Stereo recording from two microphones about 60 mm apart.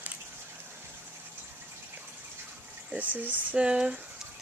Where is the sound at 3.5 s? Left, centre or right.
Centre.